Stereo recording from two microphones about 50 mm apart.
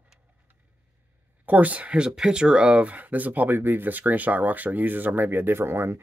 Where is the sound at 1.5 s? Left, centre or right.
Right.